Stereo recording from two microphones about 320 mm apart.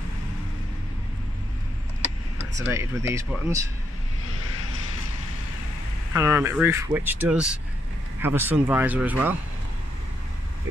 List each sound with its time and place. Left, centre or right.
2.6 s speech: centre
6.1 s speech: centre